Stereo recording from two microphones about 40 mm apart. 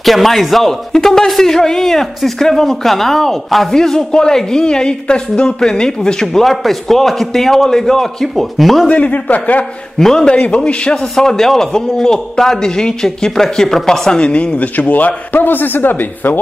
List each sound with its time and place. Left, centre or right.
0.0 s a man's voice: centre
3.7 s a man's voice: centre
6.2 s a man's voice: centre
8.8 s a man's voice: left
9.9 s a man's voice: centre
10.2 s a man's voice: left
11.0 s a man's voice: centre
14.2 s a woman's voice: left
14.6 s a man's voice: left